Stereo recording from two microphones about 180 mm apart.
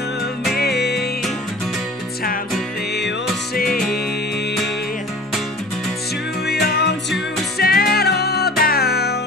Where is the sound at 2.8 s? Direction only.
65° left (ahead or behind).